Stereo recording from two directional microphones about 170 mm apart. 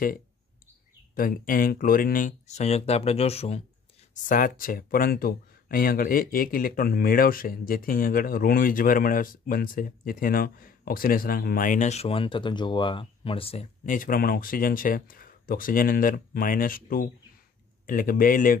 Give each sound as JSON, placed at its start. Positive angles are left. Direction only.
{"t": 1.1, "sound": "speech", "side_deg": 55}
{"t": 4.1, "sound": "speech", "side_deg": 50}
{"t": 13.8, "sound": "speech", "side_deg": 55}